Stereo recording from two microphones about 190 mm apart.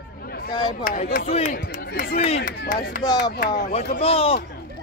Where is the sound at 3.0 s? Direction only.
20° left (ahead or behind).